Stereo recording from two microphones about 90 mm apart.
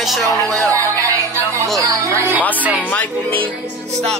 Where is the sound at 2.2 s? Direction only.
20° right (ahead or behind).